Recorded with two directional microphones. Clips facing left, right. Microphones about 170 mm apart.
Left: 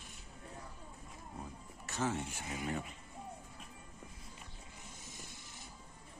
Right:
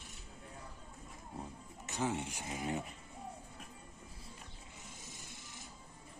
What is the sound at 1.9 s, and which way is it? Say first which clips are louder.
Speech: even; 15° right (ahead or behind).